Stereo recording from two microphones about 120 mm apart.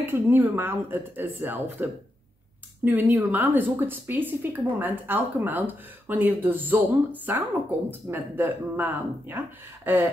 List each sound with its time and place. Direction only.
0.0 s a woman's voice: 20° right (ahead or behind)